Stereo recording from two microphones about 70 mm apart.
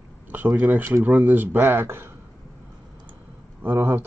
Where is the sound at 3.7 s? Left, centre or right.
Right.